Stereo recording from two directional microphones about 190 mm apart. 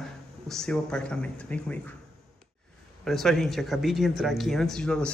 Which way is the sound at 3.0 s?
Centre (ahead or behind).